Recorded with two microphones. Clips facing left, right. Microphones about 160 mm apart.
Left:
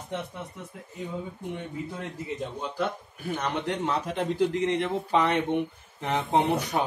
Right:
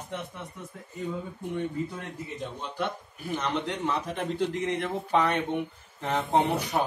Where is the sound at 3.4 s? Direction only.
15° left (ahead or behind).